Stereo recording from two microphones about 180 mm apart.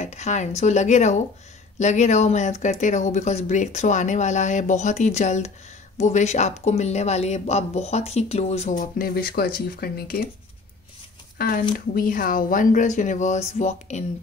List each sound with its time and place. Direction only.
0.0 s a sound: 40° left (ahead or behind)
0.6 s speech: 40° left (ahead or behind); by 10.1 s 55° left (ahead or behind)
11.3 s speech: 55° left (ahead or behind); by 14.0 s 40° left (ahead or behind)